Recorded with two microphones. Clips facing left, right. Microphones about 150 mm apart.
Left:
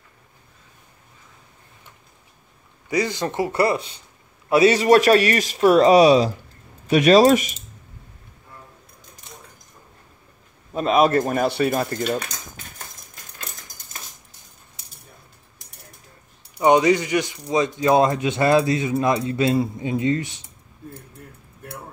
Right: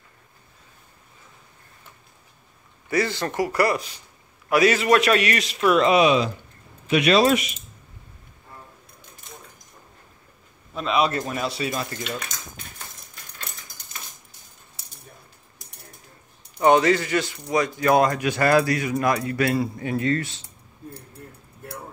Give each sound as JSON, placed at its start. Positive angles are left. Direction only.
{"t": 2.9, "sound": "a man's voice", "side_deg": 15}
{"t": 10.7, "sound": "speech", "side_deg": 45}
{"t": 16.5, "sound": "speech", "side_deg": 15}